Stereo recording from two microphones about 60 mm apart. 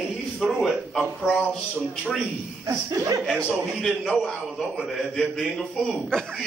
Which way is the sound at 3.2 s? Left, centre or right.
Centre.